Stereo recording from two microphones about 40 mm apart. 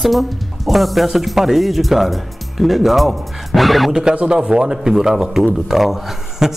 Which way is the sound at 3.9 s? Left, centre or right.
Centre.